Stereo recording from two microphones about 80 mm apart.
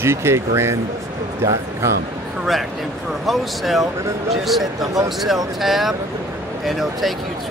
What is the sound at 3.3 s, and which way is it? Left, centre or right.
Speech, centre.